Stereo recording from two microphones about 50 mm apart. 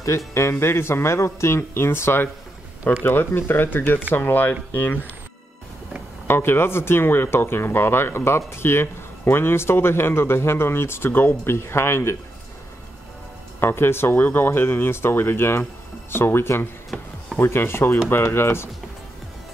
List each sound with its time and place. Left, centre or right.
0.3 s speech: left
6.2 s speech: left
11.1 s speech: left
13.6 s speech: left